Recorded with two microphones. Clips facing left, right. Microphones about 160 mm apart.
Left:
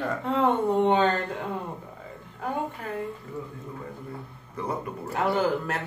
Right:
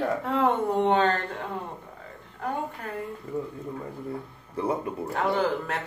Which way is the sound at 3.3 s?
20° right (ahead or behind).